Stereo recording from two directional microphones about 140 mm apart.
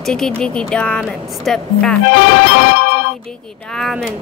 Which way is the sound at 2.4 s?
85° left.